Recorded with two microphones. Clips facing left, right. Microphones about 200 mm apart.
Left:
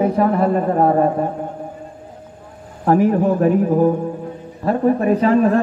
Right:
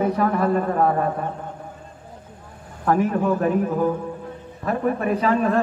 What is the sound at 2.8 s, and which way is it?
A man's voice, 35° left (ahead or behind).